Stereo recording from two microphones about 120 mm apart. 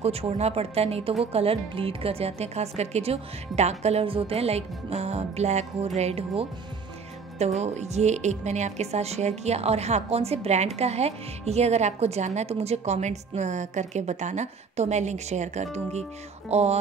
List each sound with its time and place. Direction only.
0.0 s a woman's voice: 55° right (ahead or behind)